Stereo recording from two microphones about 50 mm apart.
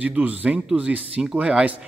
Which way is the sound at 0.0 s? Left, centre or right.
Right.